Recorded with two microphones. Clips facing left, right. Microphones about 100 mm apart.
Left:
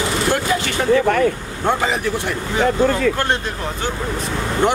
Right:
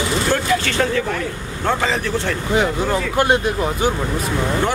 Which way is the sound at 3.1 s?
10° right (ahead or behind).